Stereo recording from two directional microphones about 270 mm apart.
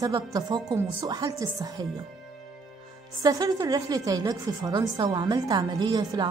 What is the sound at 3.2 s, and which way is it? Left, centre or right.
A woman's voice, centre.